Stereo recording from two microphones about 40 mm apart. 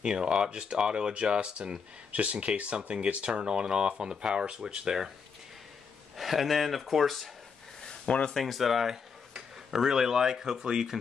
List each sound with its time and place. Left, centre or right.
0.0 s speech: right
6.1 s speech: centre
8.1 s speech: left
8.4 s speech: centre